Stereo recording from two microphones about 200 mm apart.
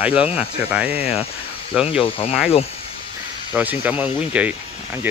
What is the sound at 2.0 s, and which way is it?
Speech, 30° left (ahead or behind).